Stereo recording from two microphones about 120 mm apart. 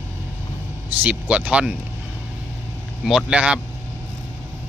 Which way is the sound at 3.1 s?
5° right (ahead or behind).